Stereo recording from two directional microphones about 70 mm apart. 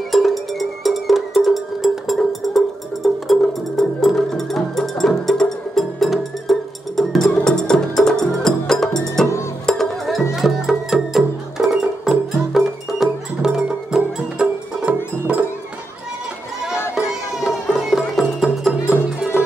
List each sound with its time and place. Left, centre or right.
0.1 s music: centre; by 15.4 s right
16.9 s music: centre